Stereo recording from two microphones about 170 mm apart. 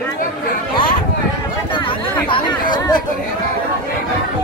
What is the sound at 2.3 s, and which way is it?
Chatter, 30° left (ahead or behind).